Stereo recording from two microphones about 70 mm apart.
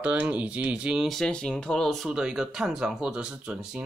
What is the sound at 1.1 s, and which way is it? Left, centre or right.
Speech, centre.